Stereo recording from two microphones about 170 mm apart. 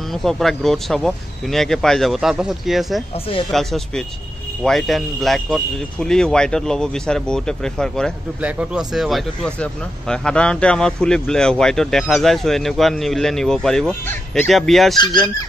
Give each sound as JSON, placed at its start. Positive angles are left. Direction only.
{"t": 0.1, "sound": "speech", "side_deg": 0}
{"t": 8.4, "sound": "speech", "side_deg": -5}
{"t": 15.0, "sound": "speech", "side_deg": 25}